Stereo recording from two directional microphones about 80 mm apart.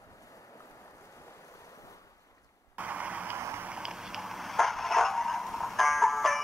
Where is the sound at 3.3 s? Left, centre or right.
Right.